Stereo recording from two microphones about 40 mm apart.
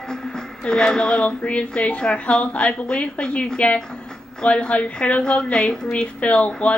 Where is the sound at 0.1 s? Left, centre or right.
Centre.